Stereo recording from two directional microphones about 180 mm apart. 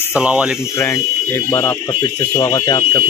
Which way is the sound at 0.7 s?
15° left (ahead or behind).